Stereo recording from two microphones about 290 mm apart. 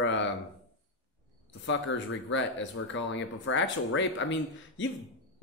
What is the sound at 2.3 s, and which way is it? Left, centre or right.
A man's voice, left.